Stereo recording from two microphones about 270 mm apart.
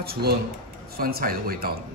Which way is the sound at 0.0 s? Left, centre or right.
Right.